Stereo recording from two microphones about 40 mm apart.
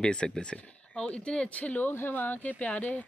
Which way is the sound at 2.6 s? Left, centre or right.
Left.